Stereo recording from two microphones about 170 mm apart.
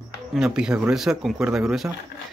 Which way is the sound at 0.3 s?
5° right (ahead or behind).